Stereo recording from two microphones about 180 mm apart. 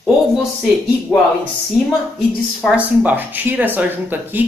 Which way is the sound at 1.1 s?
5° left (ahead or behind).